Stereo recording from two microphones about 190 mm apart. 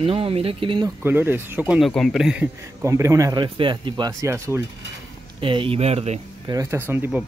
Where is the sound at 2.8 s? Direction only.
15° right (ahead or behind).